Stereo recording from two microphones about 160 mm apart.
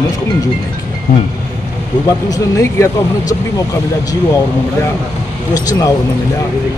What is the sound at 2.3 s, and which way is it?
Speech, 20° left (ahead or behind).